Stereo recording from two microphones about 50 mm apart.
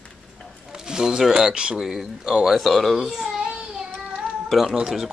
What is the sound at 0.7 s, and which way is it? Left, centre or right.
Speech, centre.